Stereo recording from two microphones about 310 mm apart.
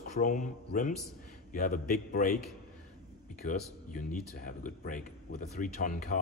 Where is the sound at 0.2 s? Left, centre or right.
Left.